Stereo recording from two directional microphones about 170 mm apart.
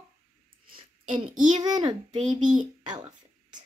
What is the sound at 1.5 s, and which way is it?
A child's voice, 25° right (ahead or behind).